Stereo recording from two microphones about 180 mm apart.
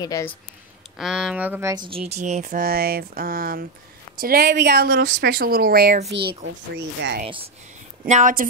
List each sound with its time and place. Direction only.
0.0 s speech: 20° left (ahead or behind)
0.9 s speech: centre (ahead or behind)
1.9 s speech: 35° right (ahead or behind)
2.4 s speech: 55° right (ahead or behind)
7.0 s speech: 70° right (ahead or behind)
8.0 s a woman's voice: 45° right (ahead or behind)